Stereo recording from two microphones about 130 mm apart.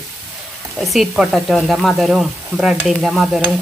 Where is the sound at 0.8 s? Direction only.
5° right (ahead or behind).